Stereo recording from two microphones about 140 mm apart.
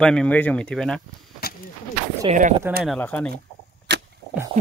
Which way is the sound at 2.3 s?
65° right (ahead or behind).